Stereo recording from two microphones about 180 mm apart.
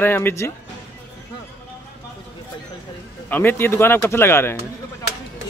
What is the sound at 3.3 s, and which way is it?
Speech, 10° left (ahead or behind).